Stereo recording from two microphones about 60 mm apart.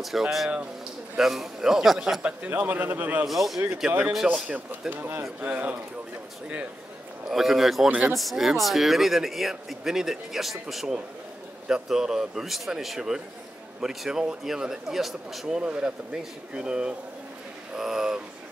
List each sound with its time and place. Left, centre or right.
0.0 s speech: centre
2.2 s speech: right
3.3 s speech: centre
4.2 s a man's voice: right
4.6 s a man's voice: right
7.2 s speech: centre